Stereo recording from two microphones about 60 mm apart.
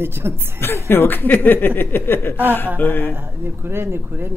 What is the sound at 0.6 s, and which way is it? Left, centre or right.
Speech, left.